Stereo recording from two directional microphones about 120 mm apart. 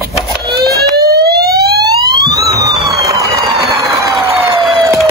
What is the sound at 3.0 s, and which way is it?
Music, 25° right (ahead or behind).